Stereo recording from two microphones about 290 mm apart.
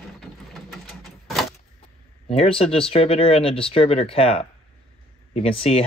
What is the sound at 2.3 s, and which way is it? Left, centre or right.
Speech, centre.